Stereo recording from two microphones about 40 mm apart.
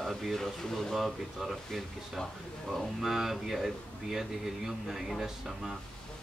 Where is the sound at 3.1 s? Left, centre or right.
Centre.